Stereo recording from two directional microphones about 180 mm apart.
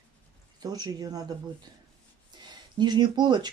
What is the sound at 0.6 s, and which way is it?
Speech, 20° right (ahead or behind).